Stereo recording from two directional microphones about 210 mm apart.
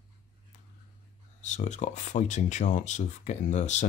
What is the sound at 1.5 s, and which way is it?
Speech, 35° left (ahead or behind).